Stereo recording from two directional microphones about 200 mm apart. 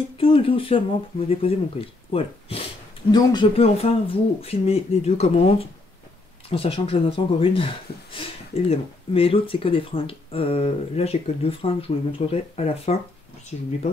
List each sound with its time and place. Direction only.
0.2 s speech: 25° left (ahead or behind)